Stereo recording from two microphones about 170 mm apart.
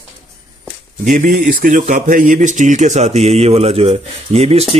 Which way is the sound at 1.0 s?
50° right (ahead or behind).